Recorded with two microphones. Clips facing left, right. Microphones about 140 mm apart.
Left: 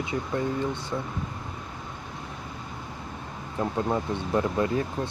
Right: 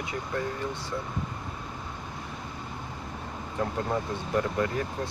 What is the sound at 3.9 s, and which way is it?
Speech, 25° left (ahead or behind).